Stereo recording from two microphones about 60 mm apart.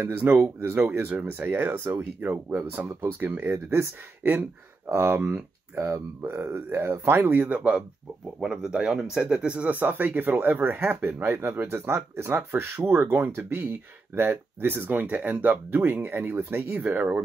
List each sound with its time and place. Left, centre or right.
0.0 s speech: right
8.4 s speech: centre
9.7 s speech: right
16.7 s speech: right